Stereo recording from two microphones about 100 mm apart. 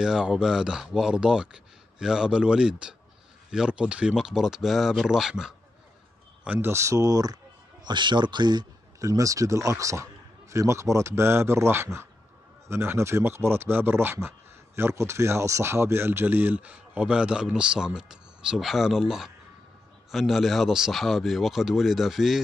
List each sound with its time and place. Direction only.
0.0 s speech: 5° right (ahead or behind)
6.4 s speech: 15° right (ahead or behind)
6.7 s speech: 30° right (ahead or behind)
7.8 s speech: 50° right (ahead or behind); by 22.4 s centre (ahead or behind)